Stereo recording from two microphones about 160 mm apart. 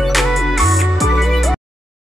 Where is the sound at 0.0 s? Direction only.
Centre (ahead or behind).